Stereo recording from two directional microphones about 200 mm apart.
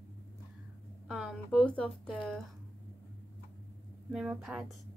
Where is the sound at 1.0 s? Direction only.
Centre (ahead or behind).